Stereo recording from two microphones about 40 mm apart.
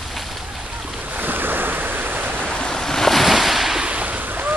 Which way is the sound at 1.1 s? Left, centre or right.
Right.